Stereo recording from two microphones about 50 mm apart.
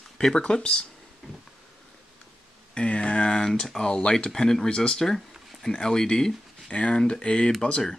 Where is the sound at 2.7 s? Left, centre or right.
Left.